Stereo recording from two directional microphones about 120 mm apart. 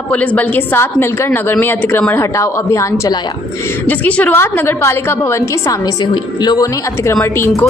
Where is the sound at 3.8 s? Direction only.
15° left (ahead or behind).